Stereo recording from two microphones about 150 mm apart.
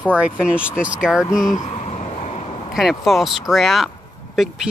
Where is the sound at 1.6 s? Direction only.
50° left (ahead or behind).